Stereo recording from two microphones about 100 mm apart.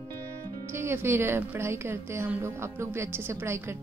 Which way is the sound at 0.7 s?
25° right (ahead or behind).